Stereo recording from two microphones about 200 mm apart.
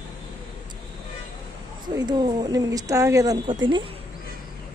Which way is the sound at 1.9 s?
20° right (ahead or behind).